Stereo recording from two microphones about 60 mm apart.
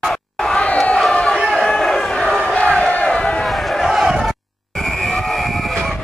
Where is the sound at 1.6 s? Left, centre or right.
Centre.